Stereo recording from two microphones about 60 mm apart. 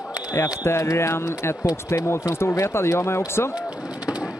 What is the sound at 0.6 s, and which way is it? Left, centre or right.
Speech, left.